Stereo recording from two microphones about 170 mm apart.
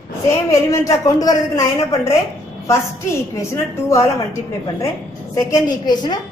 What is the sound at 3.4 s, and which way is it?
Speech, 15° left (ahead or behind).